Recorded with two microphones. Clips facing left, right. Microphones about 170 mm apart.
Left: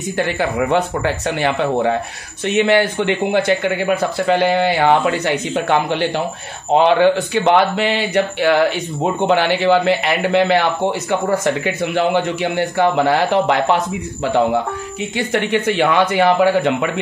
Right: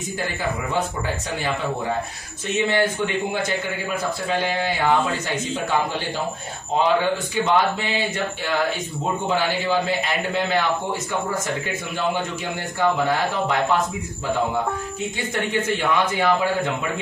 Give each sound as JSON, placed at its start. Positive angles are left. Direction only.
{"t": 0.2, "sound": "speech", "side_deg": 75}